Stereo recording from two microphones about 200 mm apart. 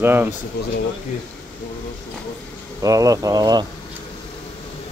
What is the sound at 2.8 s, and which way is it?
Speech, 15° right (ahead or behind).